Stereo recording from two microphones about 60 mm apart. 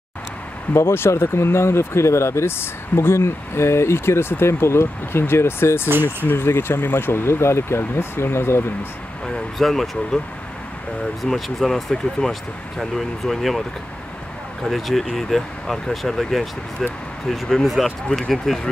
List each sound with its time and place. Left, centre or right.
0.7 s speech: left
9.2 s speech: centre
11.2 s speech: centre
14.6 s speech: centre